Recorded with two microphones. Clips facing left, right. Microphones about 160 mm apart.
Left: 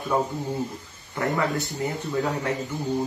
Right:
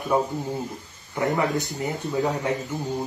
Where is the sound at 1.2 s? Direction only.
20° right (ahead or behind).